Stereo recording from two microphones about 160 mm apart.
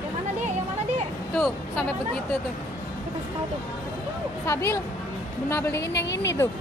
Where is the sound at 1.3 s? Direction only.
5° left (ahead or behind).